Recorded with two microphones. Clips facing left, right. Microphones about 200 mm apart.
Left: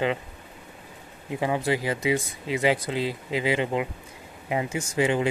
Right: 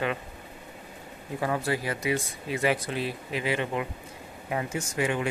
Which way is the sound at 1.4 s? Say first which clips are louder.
Left 3 dB; 20° left (ahead or behind).